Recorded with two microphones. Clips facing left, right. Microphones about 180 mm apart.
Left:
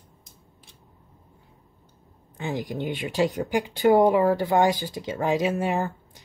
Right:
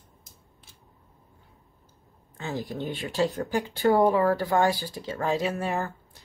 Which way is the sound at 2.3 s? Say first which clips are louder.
Left 3 dB; 15° left (ahead or behind).